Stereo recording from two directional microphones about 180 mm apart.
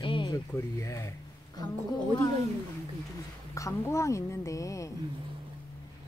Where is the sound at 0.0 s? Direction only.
25° left (ahead or behind).